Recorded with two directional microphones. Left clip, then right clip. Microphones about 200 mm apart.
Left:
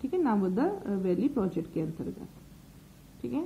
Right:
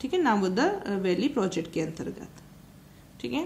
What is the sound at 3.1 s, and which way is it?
Speech, 5° right (ahead or behind).